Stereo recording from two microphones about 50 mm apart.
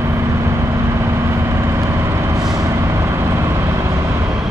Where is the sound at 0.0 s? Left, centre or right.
Right.